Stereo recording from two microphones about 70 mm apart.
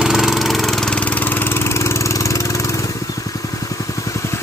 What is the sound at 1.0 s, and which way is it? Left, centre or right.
Vehicle, left.